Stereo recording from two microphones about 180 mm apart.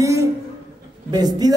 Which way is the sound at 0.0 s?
15° right (ahead or behind).